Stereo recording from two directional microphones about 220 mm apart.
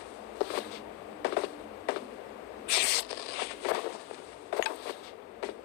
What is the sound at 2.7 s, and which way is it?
Zipper, 45° left (ahead or behind).